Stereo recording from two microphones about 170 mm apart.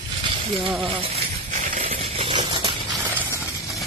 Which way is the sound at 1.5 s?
45° right (ahead or behind).